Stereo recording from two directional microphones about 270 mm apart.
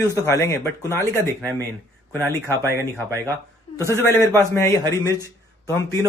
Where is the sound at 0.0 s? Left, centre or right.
Centre.